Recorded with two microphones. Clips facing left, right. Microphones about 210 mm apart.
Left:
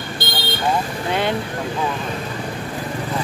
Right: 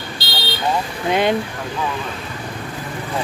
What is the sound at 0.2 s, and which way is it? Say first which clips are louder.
Vehicle: left 4 dB; 55° left (ahead or behind).